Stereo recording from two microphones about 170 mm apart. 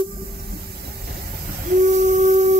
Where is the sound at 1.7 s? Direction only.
45° right (ahead or behind).